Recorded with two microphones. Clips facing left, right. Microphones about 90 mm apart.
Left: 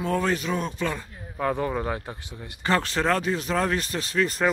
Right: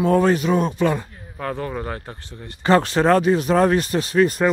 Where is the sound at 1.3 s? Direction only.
15° left (ahead or behind).